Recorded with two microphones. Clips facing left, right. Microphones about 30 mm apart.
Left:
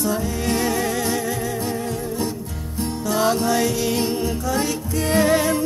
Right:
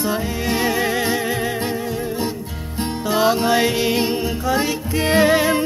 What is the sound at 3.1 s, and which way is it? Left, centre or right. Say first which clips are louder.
Music: right 3 dB; right.